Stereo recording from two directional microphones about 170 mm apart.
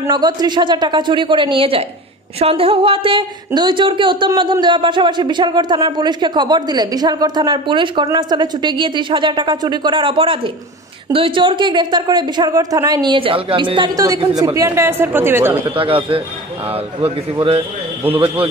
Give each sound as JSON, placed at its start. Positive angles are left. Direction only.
{"t": 0.0, "sound": "a woman's voice", "side_deg": -25}
{"t": 15.7, "sound": "a man's voice", "side_deg": -30}